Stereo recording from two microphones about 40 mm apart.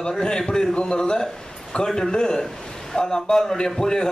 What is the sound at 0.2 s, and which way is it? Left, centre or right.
A man's voice, centre.